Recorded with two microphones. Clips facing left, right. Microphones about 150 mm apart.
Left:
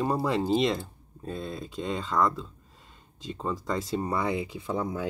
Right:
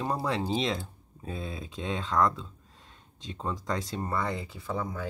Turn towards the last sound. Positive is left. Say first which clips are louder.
# left 3 dB
turn(degrees=20)  # may be behind; listen again after turning